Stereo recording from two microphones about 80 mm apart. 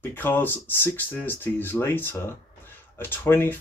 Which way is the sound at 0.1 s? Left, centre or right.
Left.